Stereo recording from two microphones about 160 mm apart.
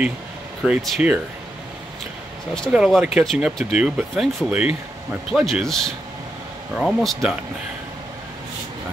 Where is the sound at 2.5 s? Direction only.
Centre (ahead or behind).